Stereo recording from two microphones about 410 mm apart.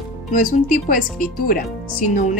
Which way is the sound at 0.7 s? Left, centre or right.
Centre.